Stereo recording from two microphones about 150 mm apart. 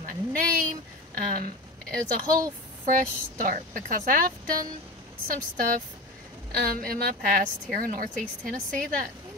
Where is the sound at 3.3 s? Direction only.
65° right (ahead or behind).